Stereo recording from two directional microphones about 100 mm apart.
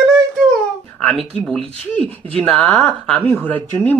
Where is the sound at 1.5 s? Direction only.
5° left (ahead or behind).